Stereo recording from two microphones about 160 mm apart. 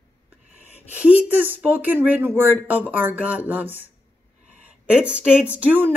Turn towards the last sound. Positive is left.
turn(degrees=-10)  # may be behind; listen again after turning